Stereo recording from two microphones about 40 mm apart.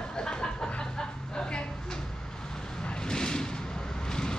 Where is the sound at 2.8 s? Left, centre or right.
Left.